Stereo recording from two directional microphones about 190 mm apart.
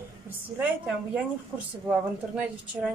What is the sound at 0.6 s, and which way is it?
A woman's voice, 5° right (ahead or behind).